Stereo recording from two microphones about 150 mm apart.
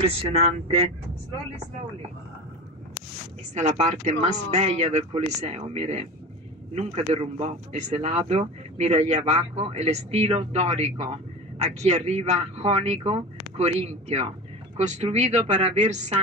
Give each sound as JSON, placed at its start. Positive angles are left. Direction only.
{"t": 0.0, "sound": "speech", "side_deg": -45}
{"t": 3.5, "sound": "speech", "side_deg": -50}